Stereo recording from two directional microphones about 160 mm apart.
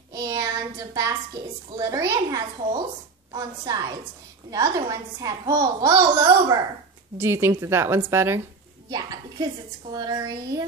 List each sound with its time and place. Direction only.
0.1 s child singing: 25° right (ahead or behind)
1.8 s a woman's voice: 20° right (ahead or behind)